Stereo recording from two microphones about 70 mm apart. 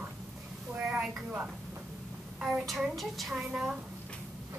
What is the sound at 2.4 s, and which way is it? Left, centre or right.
A woman's voice, centre.